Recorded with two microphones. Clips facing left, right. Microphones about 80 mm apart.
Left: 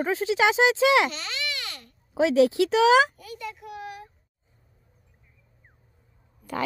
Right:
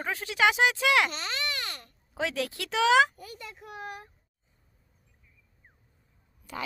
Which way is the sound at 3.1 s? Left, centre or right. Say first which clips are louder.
Left 7 dB; right.